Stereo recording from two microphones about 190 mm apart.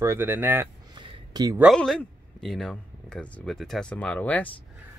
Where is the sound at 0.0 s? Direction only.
15° right (ahead or behind).